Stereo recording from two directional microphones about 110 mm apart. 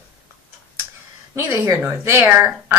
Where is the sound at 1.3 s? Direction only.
25° right (ahead or behind).